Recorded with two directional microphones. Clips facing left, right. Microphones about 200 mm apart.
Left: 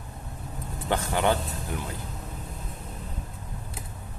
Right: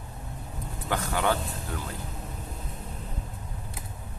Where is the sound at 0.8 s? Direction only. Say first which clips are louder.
Left 2 dB; 25° left (ahead or behind).